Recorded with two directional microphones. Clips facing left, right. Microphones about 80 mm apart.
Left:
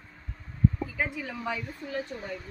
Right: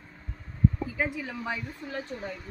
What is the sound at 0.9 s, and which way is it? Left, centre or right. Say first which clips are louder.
Speech: right 1 dB; centre.